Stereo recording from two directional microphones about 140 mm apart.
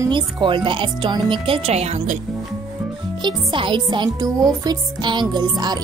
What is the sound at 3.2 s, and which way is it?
Speech, 35° right (ahead or behind).